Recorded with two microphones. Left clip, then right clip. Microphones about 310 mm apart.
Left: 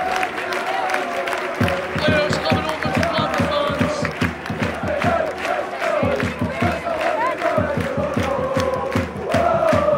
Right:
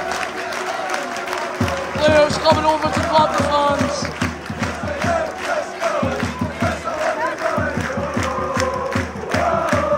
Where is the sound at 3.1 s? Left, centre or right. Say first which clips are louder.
Right 5 dB; centre.